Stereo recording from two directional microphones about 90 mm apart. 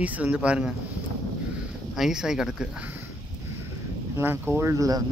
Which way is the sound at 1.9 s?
5° right (ahead or behind).